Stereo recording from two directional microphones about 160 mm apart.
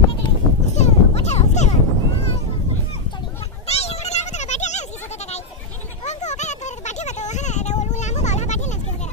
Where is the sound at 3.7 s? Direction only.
40° left (ahead or behind).